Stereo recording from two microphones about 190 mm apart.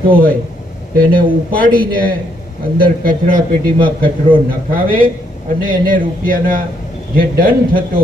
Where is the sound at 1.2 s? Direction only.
50° right (ahead or behind).